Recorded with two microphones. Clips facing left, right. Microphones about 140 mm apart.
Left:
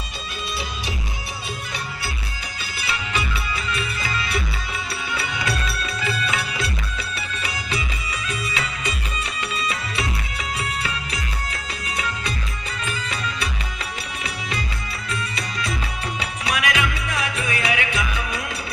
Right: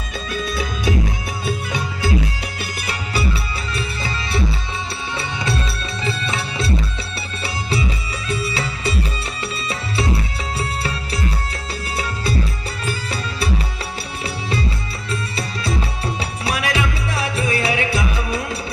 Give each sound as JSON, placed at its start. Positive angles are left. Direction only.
{"t": 2.8, "sound": "music", "side_deg": -40}
{"t": 12.8, "sound": "music", "side_deg": -35}